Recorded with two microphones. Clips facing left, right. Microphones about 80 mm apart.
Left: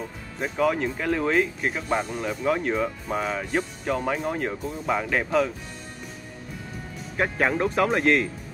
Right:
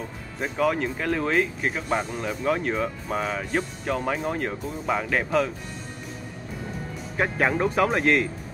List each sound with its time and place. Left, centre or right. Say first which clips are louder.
0.4 s speech: even; centre
7.2 s speech: even; centre